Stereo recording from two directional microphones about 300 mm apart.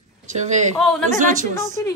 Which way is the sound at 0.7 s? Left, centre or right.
Centre.